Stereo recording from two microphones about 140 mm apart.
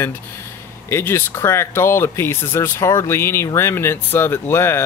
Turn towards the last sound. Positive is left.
turn(degrees=15)  # may be behind; listen again after turning